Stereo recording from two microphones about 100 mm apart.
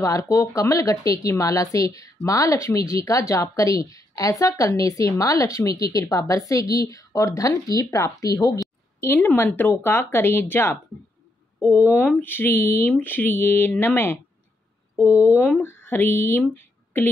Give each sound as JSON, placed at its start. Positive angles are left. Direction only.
{"t": 0.0, "sound": "speech", "side_deg": 35}
{"t": 9.0, "sound": "speech", "side_deg": 20}